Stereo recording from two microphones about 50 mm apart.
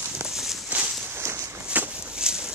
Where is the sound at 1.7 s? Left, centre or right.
Right.